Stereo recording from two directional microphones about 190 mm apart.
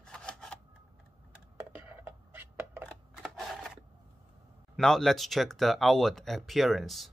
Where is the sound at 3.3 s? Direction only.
Centre (ahead or behind).